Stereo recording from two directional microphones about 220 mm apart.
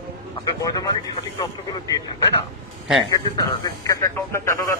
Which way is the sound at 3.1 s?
15° left (ahead or behind).